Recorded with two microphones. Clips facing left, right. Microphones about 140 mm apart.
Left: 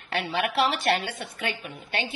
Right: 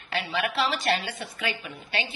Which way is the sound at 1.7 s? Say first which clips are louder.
Left 1 dB; 55° left (ahead or behind).